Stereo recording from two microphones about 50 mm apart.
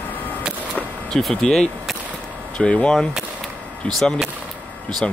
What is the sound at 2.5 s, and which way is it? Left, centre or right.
Speech, left.